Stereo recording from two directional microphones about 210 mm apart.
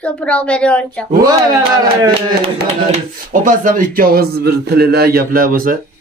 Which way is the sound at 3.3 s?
40° right (ahead or behind).